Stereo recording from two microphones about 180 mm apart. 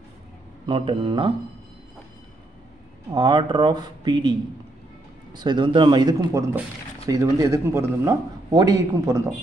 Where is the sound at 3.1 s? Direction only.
25° right (ahead or behind).